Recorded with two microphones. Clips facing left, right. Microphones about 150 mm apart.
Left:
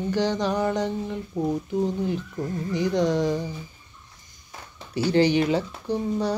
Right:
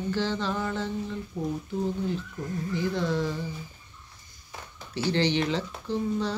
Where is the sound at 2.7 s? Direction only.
15° left (ahead or behind).